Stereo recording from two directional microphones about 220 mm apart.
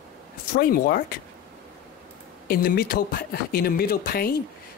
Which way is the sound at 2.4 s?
45° left (ahead or behind).